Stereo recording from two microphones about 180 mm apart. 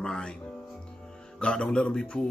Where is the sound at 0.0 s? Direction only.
5° left (ahead or behind).